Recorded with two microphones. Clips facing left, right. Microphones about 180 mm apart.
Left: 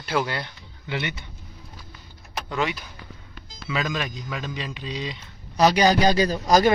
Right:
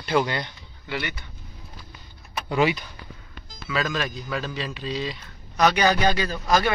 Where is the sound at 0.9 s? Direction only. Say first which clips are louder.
Left 1 dB; 20° left (ahead or behind).